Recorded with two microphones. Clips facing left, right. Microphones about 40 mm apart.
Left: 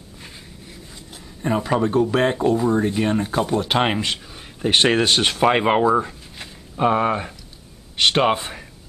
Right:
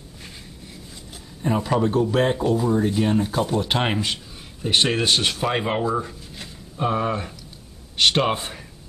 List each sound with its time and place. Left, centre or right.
1.5 s speech: centre
4.6 s speech: left
8.4 s speech: centre